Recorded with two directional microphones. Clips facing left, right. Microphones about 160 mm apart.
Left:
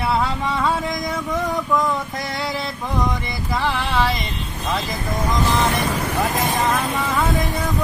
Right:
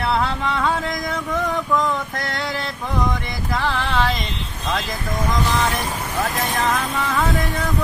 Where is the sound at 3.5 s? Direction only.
15° left (ahead or behind).